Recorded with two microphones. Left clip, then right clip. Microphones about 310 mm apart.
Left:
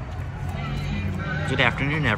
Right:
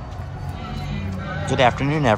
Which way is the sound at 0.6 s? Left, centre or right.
Right.